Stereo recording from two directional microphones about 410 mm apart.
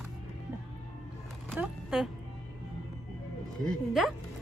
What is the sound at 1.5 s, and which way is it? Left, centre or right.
Speech, centre.